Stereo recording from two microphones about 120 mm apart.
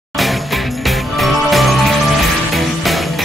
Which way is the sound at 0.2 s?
Centre (ahead or behind).